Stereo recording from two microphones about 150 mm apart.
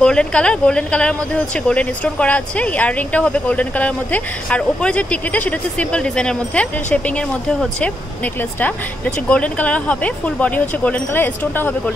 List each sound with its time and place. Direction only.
0.0 s speech: 5° left (ahead or behind)